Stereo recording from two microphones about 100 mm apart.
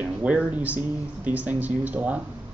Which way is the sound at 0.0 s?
15° right (ahead or behind).